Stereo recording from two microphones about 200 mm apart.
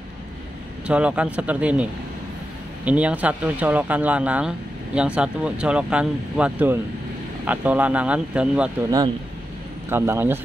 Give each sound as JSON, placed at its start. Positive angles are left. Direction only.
{"t": 0.8, "sound": "speech", "side_deg": -5}
{"t": 9.8, "sound": "speech", "side_deg": -10}